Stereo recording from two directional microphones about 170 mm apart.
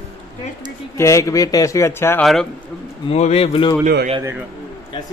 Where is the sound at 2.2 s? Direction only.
Centre (ahead or behind).